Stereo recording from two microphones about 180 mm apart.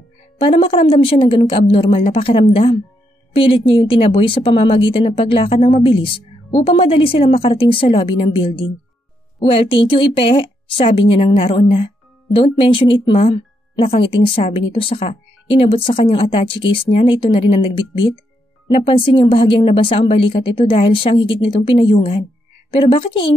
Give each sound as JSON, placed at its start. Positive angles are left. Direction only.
{"t": 0.4, "sound": "a woman's voice", "side_deg": 30}